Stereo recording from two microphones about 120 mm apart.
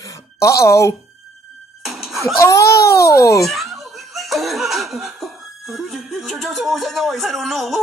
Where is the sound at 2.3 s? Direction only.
25° left (ahead or behind).